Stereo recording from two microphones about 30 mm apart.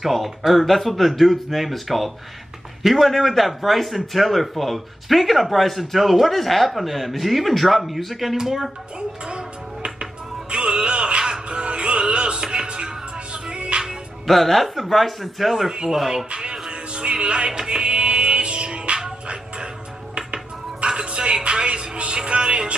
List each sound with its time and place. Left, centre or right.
0.0 s a man's voice: centre
6.2 s a man's voice: centre
10.5 s speech: right
11.4 s music: right
14.2 s a man's voice: centre
16.3 s speech: right
16.6 s music: right
20.8 s speech: right